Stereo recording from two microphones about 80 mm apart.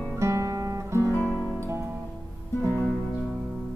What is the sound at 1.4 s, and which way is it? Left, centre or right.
Music, right.